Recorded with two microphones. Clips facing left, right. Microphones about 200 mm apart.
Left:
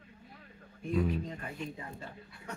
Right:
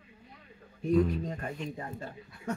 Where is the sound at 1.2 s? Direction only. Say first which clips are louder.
Right 4 dB; 45° right (ahead or behind).